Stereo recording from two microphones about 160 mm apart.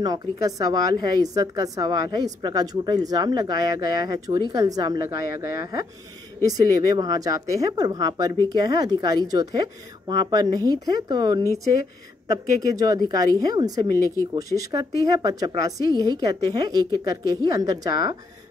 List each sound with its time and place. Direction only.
0.0 s a woman's voice: 25° right (ahead or behind)